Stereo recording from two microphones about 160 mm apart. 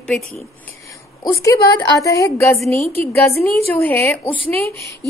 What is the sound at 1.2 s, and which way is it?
A woman's voice, 20° left (ahead or behind).